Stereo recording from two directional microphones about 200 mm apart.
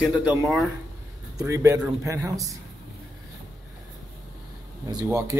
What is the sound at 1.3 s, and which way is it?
Speech, 15° right (ahead or behind).